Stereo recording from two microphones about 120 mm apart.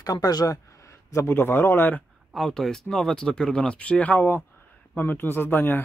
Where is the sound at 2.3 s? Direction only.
5° left (ahead or behind).